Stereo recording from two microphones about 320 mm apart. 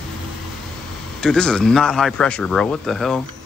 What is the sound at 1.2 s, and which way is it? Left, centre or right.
Speech, centre.